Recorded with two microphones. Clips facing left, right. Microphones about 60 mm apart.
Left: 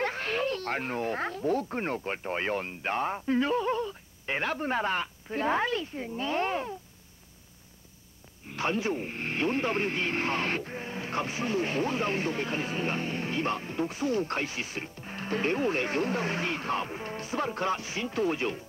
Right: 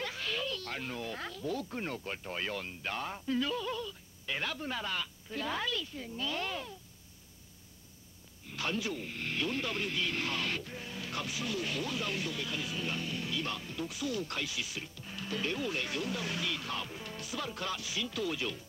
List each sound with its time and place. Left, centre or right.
0.0 s speech: left
8.5 s speech: left